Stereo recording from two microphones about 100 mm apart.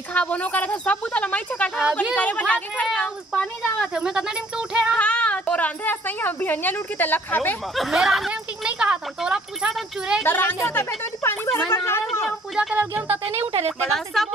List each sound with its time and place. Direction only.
0.1 s a woman's voice: 15° left (ahead or behind)
3.0 s speech: 5° left (ahead or behind)
4.9 s a woman's voice: 10° left (ahead or behind)
7.7 s speech: centre (ahead or behind)
10.2 s speech: 20° left (ahead or behind)
12.7 s speech: 20° right (ahead or behind)
13.2 s a woman's voice: 85° right
13.7 s a woman's voice: 5° left (ahead or behind)